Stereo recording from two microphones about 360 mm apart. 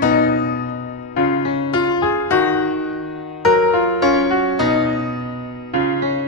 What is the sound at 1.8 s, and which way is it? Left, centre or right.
Music, centre.